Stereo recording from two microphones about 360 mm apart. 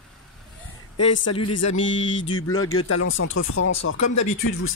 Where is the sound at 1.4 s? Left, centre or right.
Left.